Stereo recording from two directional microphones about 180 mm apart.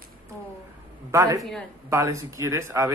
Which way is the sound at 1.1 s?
15° right (ahead or behind).